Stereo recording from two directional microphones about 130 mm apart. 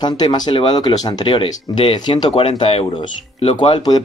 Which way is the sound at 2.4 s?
45° left (ahead or behind).